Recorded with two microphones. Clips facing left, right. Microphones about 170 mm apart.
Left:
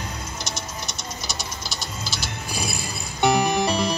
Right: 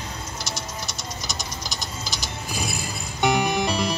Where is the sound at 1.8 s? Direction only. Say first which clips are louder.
Left 1 dB; 15° right (ahead or behind).